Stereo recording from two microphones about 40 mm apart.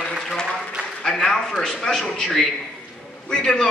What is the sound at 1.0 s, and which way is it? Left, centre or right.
A man's voice, centre.